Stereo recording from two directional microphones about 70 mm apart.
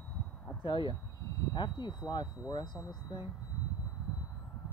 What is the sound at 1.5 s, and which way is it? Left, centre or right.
Speech, left.